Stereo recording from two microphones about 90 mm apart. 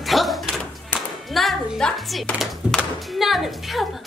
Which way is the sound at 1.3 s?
Centre (ahead or behind).